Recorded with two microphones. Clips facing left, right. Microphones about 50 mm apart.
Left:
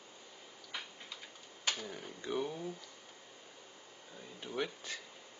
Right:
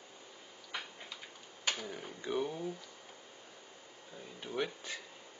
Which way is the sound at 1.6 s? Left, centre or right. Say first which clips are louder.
Right 1 dB; centre.